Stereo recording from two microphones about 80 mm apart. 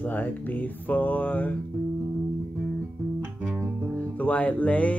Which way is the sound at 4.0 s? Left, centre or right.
Centre.